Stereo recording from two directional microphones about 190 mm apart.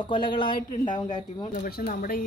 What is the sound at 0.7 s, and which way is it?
Speech, 40° left (ahead or behind).